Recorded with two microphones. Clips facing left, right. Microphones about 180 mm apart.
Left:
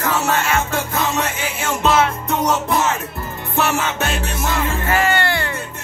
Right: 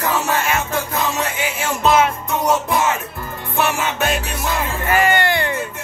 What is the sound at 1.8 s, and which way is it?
Music, 15° right (ahead or behind).